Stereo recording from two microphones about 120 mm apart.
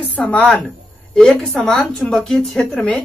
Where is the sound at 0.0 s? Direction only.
10° left (ahead or behind).